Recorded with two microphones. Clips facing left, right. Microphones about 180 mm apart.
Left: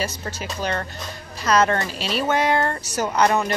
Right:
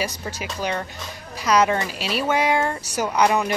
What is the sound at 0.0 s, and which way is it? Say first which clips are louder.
A woman's voice: even; 15° right (ahead or behind).